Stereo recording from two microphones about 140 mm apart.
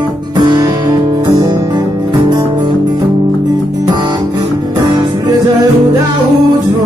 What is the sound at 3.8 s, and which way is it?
Guitar, 30° right (ahead or behind).